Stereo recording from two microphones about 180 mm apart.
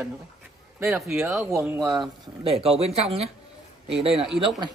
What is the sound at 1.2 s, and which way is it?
Speech, 15° right (ahead or behind).